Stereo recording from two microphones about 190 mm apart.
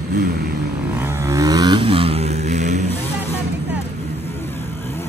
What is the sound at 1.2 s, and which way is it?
Vehicle, 20° right (ahead or behind).